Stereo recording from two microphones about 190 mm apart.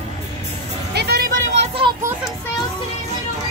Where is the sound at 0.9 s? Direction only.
55° right (ahead or behind).